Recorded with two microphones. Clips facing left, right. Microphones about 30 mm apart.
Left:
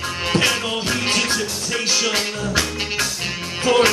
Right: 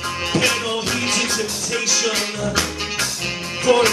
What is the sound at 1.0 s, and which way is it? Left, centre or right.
Music, left.